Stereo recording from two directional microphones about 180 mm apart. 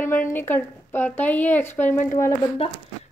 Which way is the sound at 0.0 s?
10° left (ahead or behind).